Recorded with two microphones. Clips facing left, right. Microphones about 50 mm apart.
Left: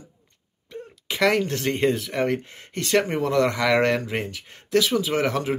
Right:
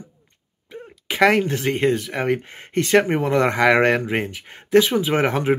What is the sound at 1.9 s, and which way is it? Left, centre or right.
Speech, centre.